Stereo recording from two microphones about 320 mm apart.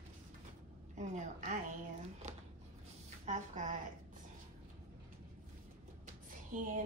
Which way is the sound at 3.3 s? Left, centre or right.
Right.